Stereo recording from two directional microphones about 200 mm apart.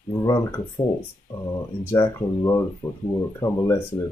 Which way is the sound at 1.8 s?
10° left (ahead or behind).